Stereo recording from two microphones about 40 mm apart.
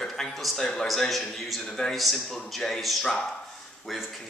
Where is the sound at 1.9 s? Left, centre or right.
Centre.